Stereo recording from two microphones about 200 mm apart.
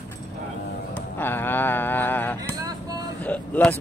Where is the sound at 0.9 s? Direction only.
10° left (ahead or behind).